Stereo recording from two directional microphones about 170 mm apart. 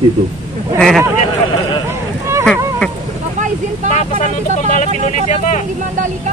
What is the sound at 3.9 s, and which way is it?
Speech, 45° left (ahead or behind).